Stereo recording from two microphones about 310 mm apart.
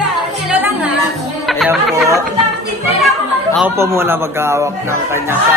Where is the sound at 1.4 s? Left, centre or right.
Centre.